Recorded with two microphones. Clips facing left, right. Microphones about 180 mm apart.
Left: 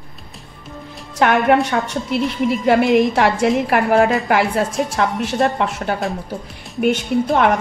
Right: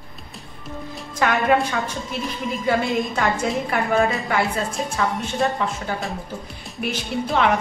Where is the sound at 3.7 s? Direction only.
70° left (ahead or behind).